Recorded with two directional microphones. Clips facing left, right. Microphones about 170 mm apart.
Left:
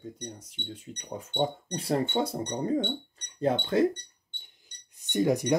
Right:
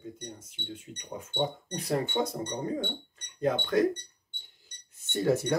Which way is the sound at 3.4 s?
25° left (ahead or behind).